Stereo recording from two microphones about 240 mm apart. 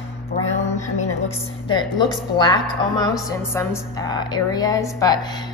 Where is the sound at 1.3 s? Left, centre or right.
Centre.